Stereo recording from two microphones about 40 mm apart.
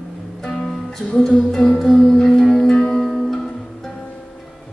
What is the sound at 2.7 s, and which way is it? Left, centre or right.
Music, centre.